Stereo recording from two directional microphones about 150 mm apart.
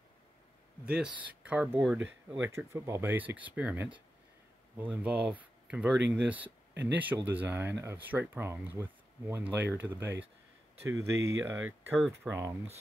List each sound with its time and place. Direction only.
0.8 s speech: 5° right (ahead or behind)
2.4 s speech: 20° right (ahead or behind)